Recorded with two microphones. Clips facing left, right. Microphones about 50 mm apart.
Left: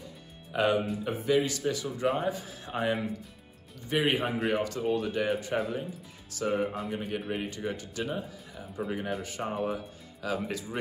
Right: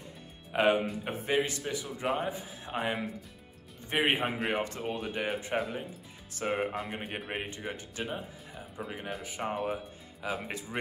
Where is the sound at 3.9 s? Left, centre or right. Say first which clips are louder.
Left 1 dB; right.